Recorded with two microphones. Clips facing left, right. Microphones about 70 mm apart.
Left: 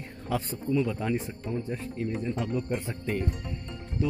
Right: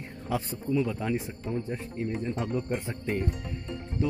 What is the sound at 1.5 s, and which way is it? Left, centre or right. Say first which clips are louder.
Speech: even; right.